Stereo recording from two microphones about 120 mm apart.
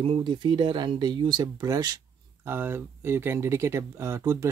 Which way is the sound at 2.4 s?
20° right (ahead or behind).